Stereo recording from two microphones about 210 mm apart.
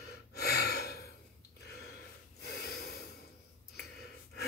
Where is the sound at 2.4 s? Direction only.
50° left (ahead or behind).